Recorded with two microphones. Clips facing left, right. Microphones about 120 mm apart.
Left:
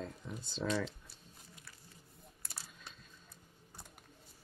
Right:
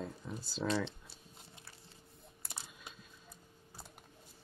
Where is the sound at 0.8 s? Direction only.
25° right (ahead or behind).